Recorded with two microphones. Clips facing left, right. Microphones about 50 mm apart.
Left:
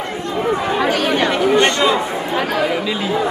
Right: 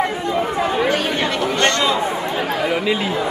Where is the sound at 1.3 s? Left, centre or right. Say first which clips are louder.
Left 3 dB; centre.